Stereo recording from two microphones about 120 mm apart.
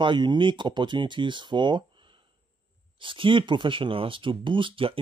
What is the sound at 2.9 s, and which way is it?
Speech, 45° right (ahead or behind).